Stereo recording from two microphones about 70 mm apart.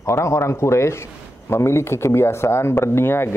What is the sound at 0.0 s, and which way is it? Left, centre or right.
Speech, left.